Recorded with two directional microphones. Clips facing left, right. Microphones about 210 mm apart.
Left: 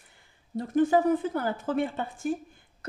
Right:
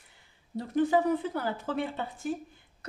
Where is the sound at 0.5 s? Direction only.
45° left (ahead or behind).